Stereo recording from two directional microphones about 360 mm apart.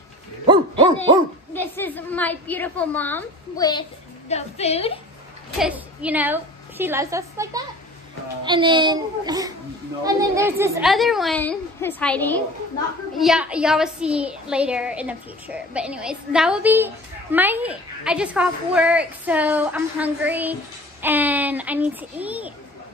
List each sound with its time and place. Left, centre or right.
1.5 s a woman's voice: centre
5.6 s a woman's voice: centre